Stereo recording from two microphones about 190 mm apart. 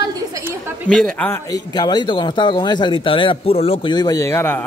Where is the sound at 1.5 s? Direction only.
20° left (ahead or behind).